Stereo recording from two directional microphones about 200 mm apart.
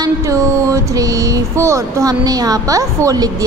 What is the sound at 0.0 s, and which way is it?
A woman's voice, 15° right (ahead or behind).